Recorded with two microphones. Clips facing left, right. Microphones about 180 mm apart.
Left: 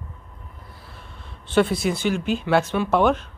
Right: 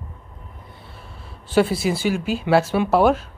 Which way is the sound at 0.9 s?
5° right (ahead or behind).